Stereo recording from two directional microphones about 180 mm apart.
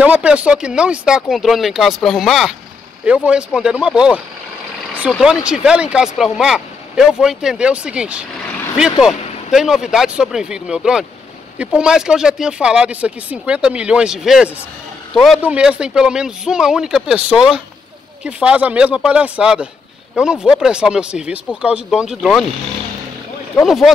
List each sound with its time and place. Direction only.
0.0 s speech: 5° right (ahead or behind)
23.6 s speech: centre (ahead or behind)